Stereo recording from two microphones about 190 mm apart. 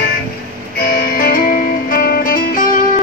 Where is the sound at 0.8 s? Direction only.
50° left (ahead or behind).